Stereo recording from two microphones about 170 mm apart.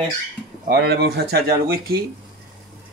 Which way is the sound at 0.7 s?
70° right (ahead or behind).